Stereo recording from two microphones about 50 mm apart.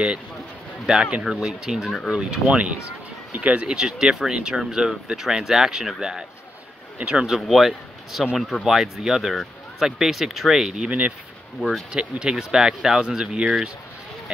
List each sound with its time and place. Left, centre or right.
0.9 s speech: centre
3.7 s speech: centre
7.3 s a man's voice: centre
9.3 s a sound: centre
9.8 s speech: centre